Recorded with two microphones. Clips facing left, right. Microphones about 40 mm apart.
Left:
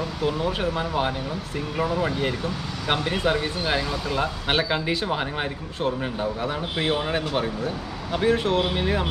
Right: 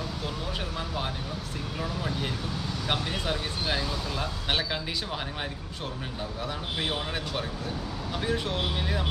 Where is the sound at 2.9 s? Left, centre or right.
Left.